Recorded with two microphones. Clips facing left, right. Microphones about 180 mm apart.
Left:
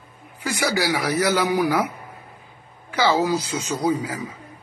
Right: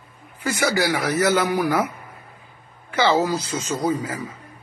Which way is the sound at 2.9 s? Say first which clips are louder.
Even; 10° left (ahead or behind).